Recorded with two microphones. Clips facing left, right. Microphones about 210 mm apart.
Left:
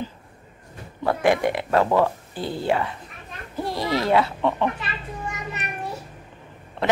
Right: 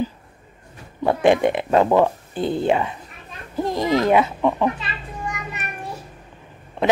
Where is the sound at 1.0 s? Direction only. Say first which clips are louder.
Right 4 dB; 20° right (ahead or behind).